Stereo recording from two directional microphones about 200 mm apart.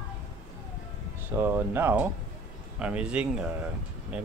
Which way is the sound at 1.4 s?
10° right (ahead or behind).